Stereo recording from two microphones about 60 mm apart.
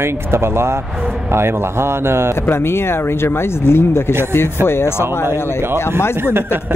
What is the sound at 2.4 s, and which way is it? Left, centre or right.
Speech, left.